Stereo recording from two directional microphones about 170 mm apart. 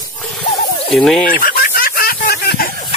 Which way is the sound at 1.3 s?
60° left (ahead or behind).